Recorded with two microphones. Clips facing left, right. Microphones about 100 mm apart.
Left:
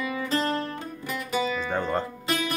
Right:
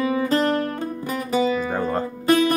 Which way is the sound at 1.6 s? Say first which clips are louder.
Right 3 dB; 5° right (ahead or behind).